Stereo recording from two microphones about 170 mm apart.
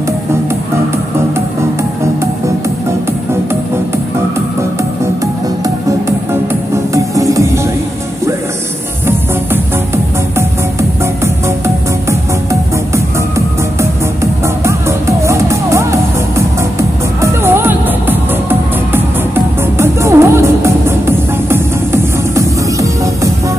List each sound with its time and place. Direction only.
6.9 s music: 20° right (ahead or behind)
10.3 s music: 15° right (ahead or behind)
13.7 s music: 15° right (ahead or behind)